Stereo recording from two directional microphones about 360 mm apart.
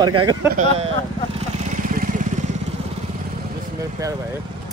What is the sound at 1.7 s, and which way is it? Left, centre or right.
Vehicle, right.